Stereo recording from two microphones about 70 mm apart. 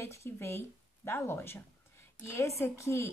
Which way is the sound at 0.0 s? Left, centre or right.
Left.